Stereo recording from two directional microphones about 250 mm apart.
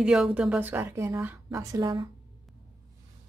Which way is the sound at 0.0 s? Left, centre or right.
Centre.